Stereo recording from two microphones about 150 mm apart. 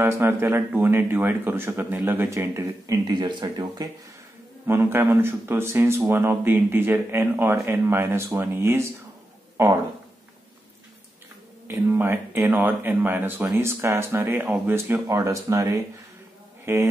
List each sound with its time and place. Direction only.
0.0 s speech: 15° right (ahead or behind)
11.6 s speech: 15° right (ahead or behind)